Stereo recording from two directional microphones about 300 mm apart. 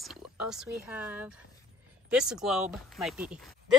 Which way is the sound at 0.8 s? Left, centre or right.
Centre.